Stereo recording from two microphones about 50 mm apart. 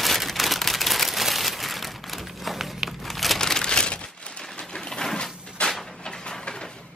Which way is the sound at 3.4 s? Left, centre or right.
Centre.